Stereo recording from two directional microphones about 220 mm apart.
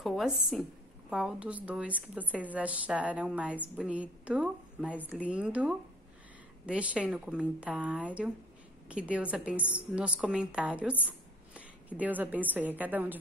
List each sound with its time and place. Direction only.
0.0 s a woman's voice: centre (ahead or behind)